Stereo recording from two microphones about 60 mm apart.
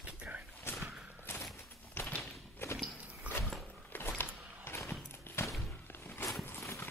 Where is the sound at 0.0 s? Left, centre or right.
Right.